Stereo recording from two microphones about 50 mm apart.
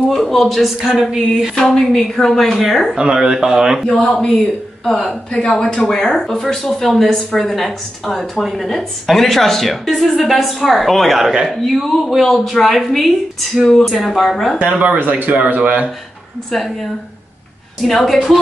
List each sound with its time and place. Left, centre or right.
0.1 s a woman's voice: centre
1.5 s speech: centre
3.0 s speech: centre
3.9 s a woman's voice: centre
13.9 s a woman's voice: centre
14.6 s speech: right
16.5 s a woman's voice: centre